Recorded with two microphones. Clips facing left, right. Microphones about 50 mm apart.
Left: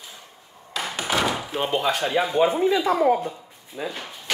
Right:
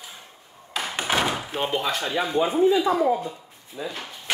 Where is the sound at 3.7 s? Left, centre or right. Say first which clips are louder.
Left 2 dB; left.